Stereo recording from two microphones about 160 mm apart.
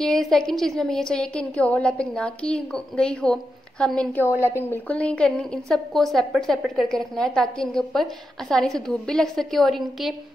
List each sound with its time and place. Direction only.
0.0 s a woman's voice: 5° left (ahead or behind)